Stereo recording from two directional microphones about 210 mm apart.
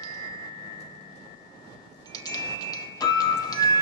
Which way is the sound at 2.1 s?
20° left (ahead or behind).